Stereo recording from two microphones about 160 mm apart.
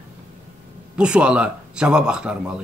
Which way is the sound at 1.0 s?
5° right (ahead or behind).